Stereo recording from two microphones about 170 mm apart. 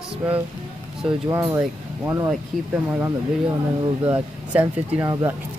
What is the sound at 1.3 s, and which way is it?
Speech, 15° right (ahead or behind).